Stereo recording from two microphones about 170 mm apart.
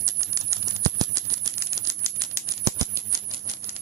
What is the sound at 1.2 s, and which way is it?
Rattle, 20° right (ahead or behind).